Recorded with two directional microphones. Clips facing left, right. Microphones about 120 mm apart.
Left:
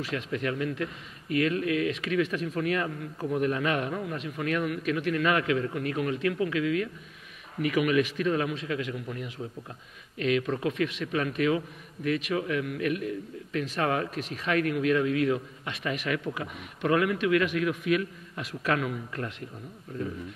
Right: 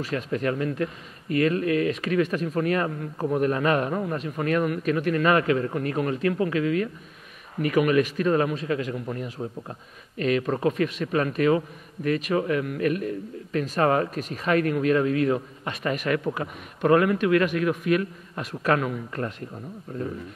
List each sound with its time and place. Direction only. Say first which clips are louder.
0.0 s a man's voice: right 4 dB; 40° right (ahead or behind)